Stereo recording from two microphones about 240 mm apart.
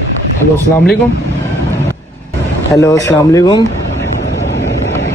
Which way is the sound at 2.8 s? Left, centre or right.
Centre.